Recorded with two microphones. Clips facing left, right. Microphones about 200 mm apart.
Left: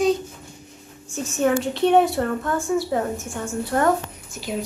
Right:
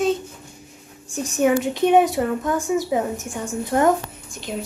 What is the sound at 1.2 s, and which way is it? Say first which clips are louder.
A woman's voice: right 2 dB; 15° right (ahead or behind).